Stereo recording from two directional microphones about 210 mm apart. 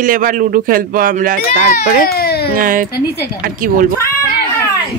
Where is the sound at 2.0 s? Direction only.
45° left (ahead or behind).